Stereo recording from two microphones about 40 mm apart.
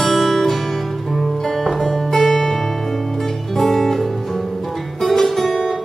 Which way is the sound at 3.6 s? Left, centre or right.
Centre.